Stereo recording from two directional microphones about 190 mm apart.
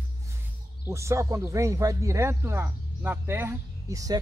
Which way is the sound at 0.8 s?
15° right (ahead or behind).